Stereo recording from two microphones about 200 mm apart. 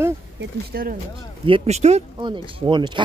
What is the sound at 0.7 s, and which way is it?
Speech, 45° right (ahead or behind).